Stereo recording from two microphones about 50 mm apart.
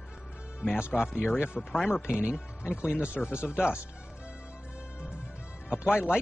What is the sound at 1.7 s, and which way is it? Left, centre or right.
Speech, centre.